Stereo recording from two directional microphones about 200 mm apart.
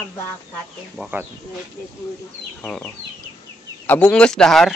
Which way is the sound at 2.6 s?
5° left (ahead or behind).